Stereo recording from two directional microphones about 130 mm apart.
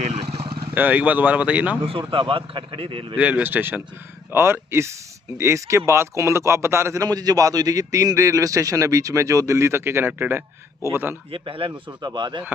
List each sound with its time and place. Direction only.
0.0 s vehicle: 50° right (ahead or behind)
0.7 s speech: 15° right (ahead or behind)
1.9 s a man's voice: 40° right (ahead or behind)
3.2 s a man's voice: 10° right (ahead or behind)
11.3 s a man's voice: 40° right (ahead or behind)